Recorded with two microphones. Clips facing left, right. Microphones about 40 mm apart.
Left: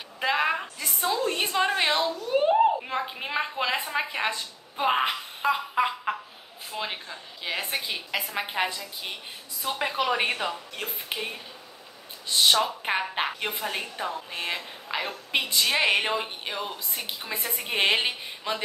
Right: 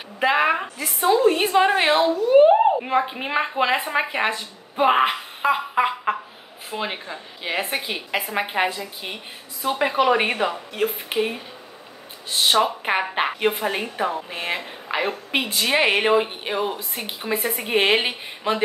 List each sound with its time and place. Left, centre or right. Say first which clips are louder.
0.2 s a woman's voice: right 6 dB; right